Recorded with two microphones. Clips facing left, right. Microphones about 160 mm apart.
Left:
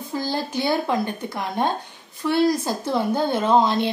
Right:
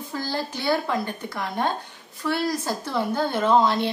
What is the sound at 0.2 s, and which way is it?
Speech, 15° left (ahead or behind).